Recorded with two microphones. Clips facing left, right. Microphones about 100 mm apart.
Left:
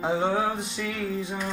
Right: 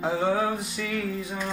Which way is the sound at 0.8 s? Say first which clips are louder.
Left 1 dB; 10° left (ahead or behind).